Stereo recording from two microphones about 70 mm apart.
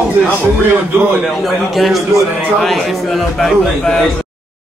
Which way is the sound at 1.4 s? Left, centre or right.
Centre.